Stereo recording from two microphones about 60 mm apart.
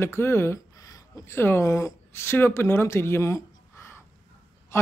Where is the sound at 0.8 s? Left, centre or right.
Left.